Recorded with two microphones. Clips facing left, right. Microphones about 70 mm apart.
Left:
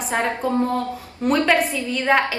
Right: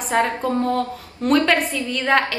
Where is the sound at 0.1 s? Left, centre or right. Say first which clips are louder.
Right 2 dB; centre.